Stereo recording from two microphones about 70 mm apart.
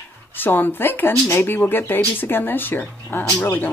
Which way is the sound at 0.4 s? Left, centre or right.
Left.